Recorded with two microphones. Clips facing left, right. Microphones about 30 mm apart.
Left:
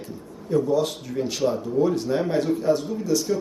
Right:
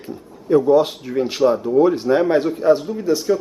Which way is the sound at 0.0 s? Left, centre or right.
Right.